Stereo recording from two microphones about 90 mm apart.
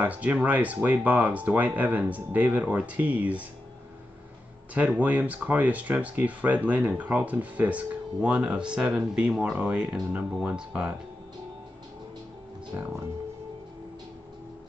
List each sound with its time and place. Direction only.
0.0 s speech: 15° right (ahead or behind)
4.7 s speech: 15° right (ahead or behind)